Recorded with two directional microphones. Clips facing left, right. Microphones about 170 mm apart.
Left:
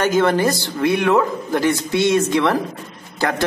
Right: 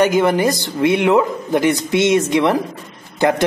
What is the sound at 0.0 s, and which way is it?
A man's voice, 15° right (ahead or behind).